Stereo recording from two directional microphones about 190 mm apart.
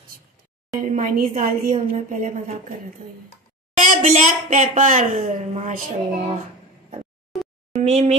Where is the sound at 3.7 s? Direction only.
45° right (ahead or behind).